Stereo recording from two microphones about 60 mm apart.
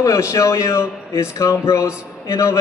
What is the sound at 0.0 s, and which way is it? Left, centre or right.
Speech, left.